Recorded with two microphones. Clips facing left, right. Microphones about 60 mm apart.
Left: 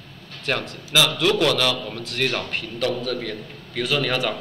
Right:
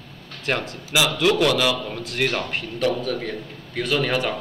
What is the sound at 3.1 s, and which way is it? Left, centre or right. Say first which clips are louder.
Speech: right 1 dB; centre.